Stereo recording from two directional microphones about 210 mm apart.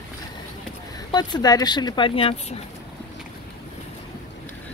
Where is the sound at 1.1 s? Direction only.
20° left (ahead or behind).